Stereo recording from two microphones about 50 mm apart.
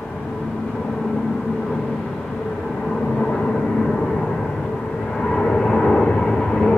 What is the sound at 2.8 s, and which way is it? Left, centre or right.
Vehicle, centre.